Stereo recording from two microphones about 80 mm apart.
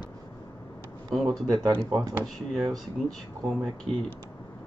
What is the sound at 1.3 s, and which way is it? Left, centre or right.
Speech, right.